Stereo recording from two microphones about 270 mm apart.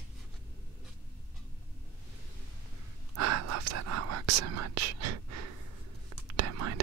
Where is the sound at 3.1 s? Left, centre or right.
Right.